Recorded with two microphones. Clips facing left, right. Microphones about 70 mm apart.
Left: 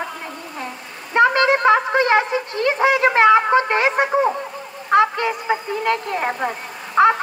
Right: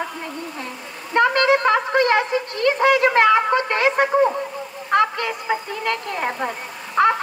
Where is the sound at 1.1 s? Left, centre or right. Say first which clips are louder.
Left 1 dB; centre.